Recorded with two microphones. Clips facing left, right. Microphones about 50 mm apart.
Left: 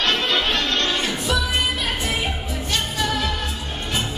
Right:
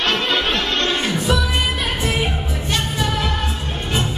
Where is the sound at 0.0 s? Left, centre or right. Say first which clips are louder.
Right 2 dB; centre.